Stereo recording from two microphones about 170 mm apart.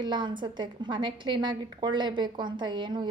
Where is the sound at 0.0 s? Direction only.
25° right (ahead or behind).